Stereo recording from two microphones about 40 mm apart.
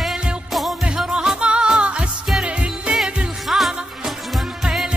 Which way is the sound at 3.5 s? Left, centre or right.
Centre.